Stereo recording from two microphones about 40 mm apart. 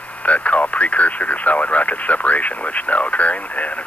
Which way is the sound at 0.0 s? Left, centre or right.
Left.